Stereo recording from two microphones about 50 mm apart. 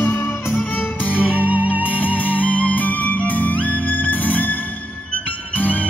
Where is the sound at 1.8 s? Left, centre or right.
Left.